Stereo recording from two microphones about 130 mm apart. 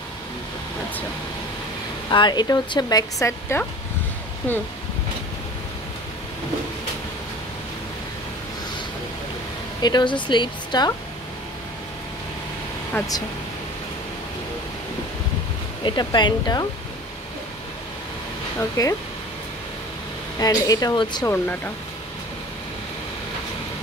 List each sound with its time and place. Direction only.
2.0 s speech: 35° left (ahead or behind)
9.8 s speech: 35° left (ahead or behind)
13.0 s speech: 20° left (ahead or behind)
15.8 s speech: 35° left (ahead or behind)
18.6 s speech: 25° left (ahead or behind)
20.3 s speech: 30° left (ahead or behind)